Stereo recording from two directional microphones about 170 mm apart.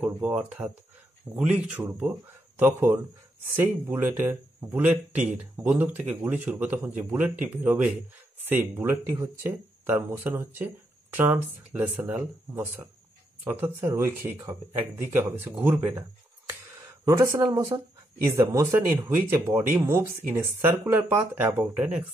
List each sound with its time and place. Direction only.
0.0 s speech: 10° right (ahead or behind)
17.0 s speech: 15° right (ahead or behind)